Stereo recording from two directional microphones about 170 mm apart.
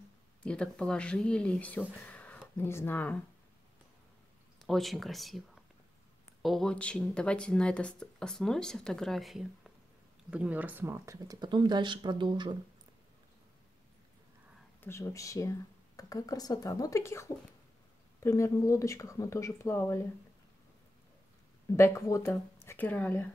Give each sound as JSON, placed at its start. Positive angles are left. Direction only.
{"t": 0.4, "sound": "speech", "side_deg": 5}
{"t": 4.6, "sound": "speech", "side_deg": 0}
{"t": 14.8, "sound": "speech", "side_deg": 15}
{"t": 21.7, "sound": "speech", "side_deg": 15}